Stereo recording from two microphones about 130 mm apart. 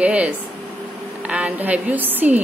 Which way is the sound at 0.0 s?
10° right (ahead or behind).